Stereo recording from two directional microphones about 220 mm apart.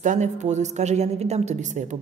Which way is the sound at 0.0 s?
35° right (ahead or behind).